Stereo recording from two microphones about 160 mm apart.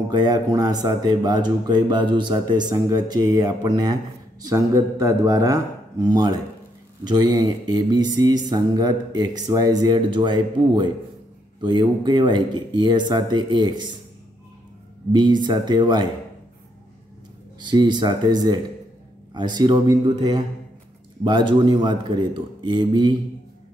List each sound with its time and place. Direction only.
0.1 s speech: 25° right (ahead or behind)
15.1 s speech: 30° right (ahead or behind)
17.6 s speech: 30° right (ahead or behind)